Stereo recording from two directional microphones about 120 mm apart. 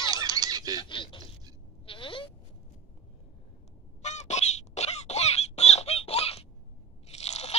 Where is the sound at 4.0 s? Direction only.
70° left (ahead or behind).